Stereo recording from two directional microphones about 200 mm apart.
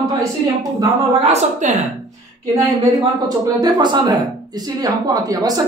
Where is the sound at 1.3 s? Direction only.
35° right (ahead or behind).